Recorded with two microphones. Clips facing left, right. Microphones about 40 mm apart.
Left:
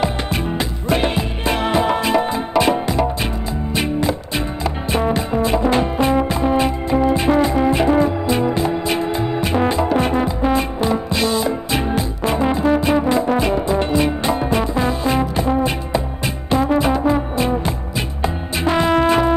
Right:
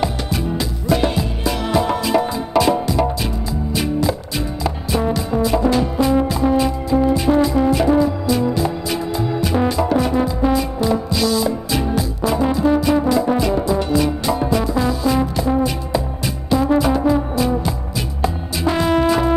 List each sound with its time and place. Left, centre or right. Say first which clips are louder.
0.0 s music: left 1 dB; left